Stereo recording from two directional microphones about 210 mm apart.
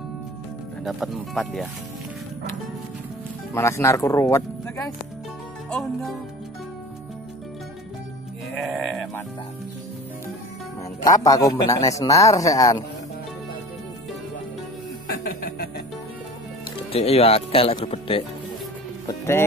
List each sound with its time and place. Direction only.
0.8 s speech: centre (ahead or behind)
3.5 s a man's voice: 15° left (ahead or behind)
5.7 s speech: centre (ahead or behind)
8.5 s sheep: centre (ahead or behind)
11.1 s a man's voice: 15° left (ahead or behind)
15.2 s music: 40° left (ahead or behind)
16.9 s speech: 30° left (ahead or behind)
19.0 s music: 10° left (ahead or behind)